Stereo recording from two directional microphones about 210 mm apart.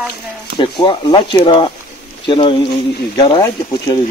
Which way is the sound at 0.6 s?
20° left (ahead or behind).